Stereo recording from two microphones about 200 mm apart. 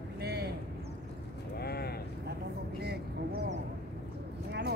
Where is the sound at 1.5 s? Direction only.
50° left (ahead or behind).